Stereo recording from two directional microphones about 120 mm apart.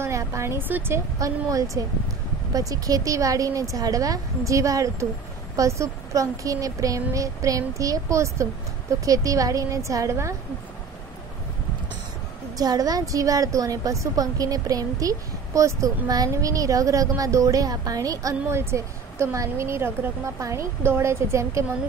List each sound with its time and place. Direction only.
0.0 s a woman's voice: 25° right (ahead or behind)
12.5 s a woman's voice: 30° right (ahead or behind)